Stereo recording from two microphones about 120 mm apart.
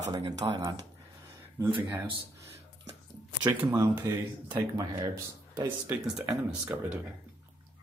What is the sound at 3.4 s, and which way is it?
Speech, 15° right (ahead or behind).